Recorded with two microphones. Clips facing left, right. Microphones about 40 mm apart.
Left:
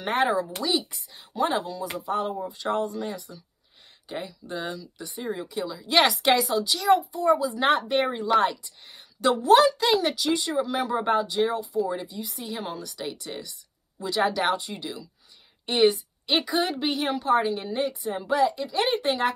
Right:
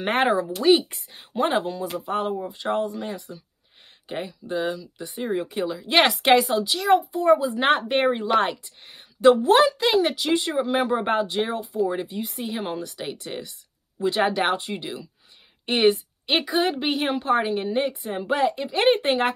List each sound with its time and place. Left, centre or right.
0.0 s speech: right
2.4 s speech: right
4.6 s speech: centre
4.9 s speech: right